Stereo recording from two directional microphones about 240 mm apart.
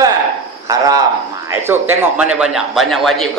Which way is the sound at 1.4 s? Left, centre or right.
Centre.